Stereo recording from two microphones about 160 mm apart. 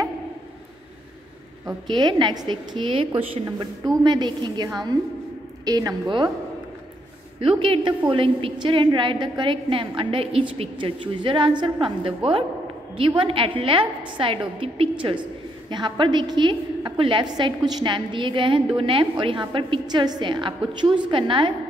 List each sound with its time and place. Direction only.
1.9 s a woman's voice: 25° right (ahead or behind)
7.3 s a woman's voice: 35° right (ahead or behind)